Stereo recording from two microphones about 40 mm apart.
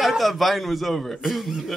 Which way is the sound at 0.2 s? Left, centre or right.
Centre.